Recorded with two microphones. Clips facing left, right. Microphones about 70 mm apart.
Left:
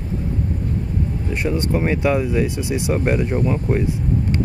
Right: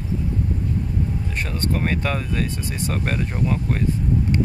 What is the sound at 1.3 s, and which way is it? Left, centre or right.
Speech, centre.